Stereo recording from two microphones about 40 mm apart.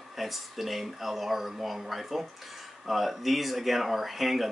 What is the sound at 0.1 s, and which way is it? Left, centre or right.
Speech, centre.